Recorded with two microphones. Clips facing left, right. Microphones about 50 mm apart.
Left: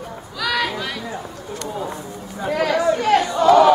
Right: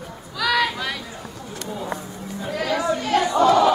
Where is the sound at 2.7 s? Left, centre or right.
Centre.